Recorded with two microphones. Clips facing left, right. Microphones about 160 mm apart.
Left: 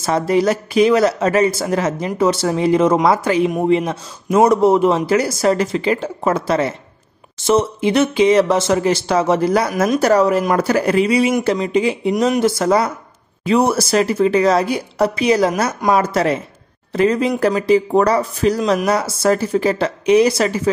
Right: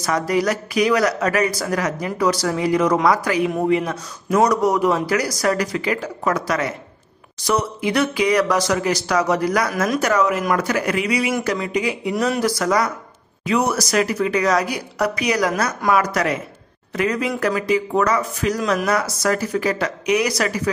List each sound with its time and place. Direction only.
0.0 s speech: 25° left (ahead or behind)